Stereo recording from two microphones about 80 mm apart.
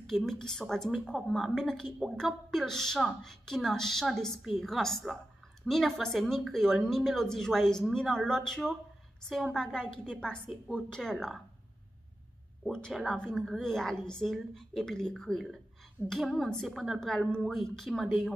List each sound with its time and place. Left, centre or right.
0.0 s a woman's voice: centre
12.6 s a woman's voice: centre